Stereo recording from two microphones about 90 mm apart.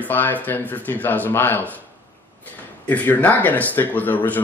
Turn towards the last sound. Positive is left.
turn(degrees=20)  # may be behind; listen again after turning